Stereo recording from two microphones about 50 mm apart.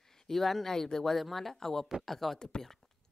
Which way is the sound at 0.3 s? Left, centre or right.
Centre.